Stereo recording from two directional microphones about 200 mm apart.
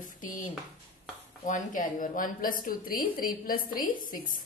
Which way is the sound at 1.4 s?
40° left (ahead or behind).